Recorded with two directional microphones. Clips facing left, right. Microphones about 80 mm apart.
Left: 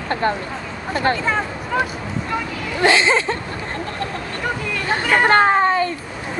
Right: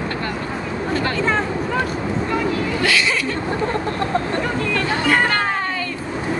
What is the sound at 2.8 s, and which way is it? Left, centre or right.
Speech, left.